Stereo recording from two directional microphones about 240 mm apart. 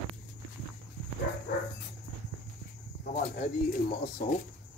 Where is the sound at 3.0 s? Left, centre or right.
Left.